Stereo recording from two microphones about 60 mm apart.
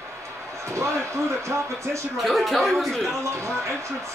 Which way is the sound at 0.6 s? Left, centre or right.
Right.